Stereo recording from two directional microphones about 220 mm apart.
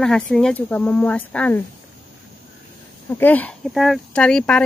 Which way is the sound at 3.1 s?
10° left (ahead or behind).